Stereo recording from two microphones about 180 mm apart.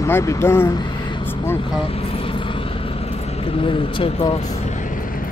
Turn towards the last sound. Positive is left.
turn(degrees=25)  # may be behind; listen again after turning